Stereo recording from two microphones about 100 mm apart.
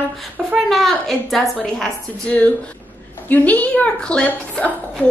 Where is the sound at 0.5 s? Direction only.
Centre (ahead or behind).